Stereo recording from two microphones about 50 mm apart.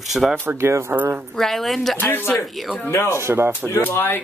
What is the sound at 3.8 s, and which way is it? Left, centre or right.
Speech, left.